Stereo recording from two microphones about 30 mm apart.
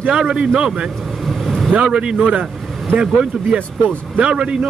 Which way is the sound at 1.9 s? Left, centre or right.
Right.